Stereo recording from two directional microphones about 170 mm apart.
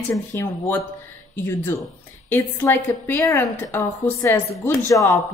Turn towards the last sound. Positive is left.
turn(degrees=15)  # may be behind; listen again after turning